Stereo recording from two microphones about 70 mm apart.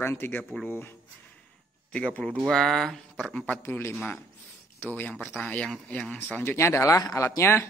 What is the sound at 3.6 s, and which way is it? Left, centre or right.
Speech, left.